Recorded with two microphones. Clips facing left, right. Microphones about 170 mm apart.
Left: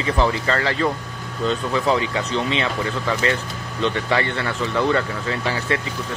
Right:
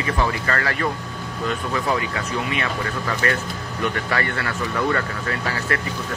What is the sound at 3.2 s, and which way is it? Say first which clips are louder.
Speech: left 1 dB; 20° left (ahead or behind).